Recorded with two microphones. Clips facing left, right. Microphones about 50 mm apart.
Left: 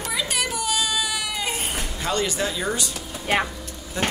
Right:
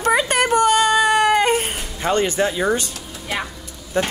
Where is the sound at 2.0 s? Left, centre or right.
Right.